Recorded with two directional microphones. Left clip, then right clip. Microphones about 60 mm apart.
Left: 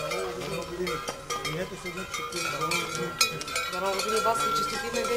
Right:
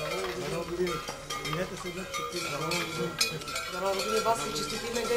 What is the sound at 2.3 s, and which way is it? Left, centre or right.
Cowbell, left.